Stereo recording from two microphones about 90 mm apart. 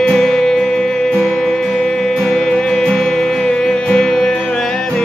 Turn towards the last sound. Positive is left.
turn(degrees=5)  # may be behind; listen again after turning